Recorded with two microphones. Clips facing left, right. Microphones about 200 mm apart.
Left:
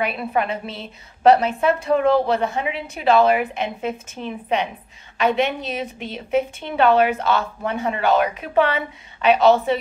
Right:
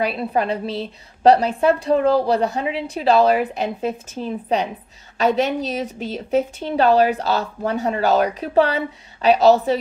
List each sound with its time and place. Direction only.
0.0 s speech: 30° right (ahead or behind)